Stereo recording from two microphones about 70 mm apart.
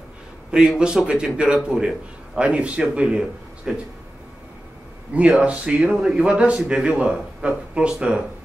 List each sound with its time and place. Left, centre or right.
0.5 s a man's voice: centre
5.1 s a man's voice: centre